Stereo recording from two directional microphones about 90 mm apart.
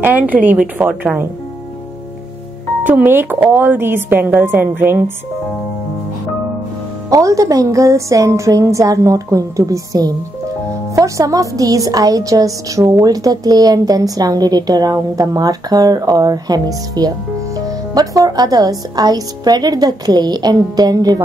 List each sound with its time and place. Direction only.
0.0 s a woman's voice: 20° right (ahead or behind)
2.8 s a woman's voice: 20° right (ahead or behind)
7.1 s a woman's voice: 40° right (ahead or behind)